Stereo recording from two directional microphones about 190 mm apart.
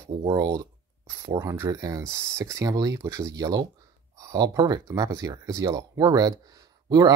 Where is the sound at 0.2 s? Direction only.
20° right (ahead or behind).